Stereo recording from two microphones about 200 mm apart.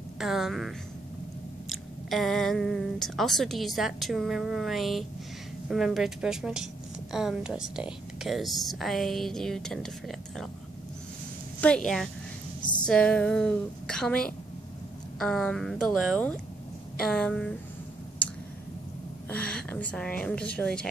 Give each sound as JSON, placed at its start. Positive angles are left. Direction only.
{"t": 0.2, "sound": "a woman's voice", "side_deg": 0}
{"t": 11.6, "sound": "a woman's voice", "side_deg": 5}
{"t": 19.2, "sound": "a woman's voice", "side_deg": 5}